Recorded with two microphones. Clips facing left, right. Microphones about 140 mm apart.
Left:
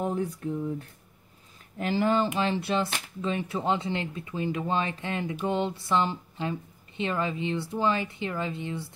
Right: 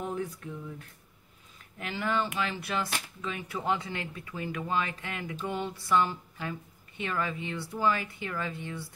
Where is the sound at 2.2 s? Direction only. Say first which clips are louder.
Left 6 dB; 30° left (ahead or behind).